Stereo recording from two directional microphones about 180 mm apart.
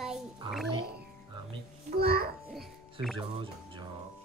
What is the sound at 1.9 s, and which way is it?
Speech, 60° right (ahead or behind).